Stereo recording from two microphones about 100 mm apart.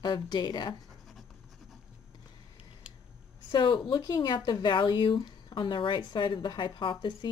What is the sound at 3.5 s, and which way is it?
Speech, 50° left (ahead or behind).